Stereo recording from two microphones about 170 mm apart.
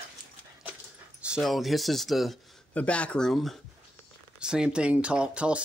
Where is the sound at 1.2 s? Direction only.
5° right (ahead or behind).